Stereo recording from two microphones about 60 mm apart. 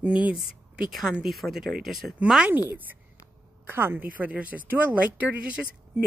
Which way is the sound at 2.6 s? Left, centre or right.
Right.